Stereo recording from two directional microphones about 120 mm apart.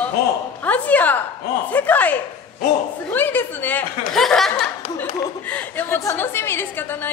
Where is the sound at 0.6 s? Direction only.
15° left (ahead or behind).